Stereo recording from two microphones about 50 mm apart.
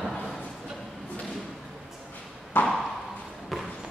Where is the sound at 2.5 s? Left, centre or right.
Left.